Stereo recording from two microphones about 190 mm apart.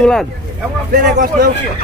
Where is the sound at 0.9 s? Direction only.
50° right (ahead or behind).